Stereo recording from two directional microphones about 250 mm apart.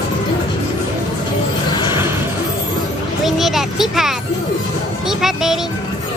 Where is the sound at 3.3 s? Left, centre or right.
Centre.